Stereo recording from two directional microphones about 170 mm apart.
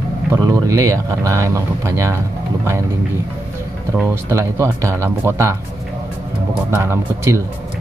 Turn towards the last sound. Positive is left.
turn(degrees=-15)  # may be behind; listen again after turning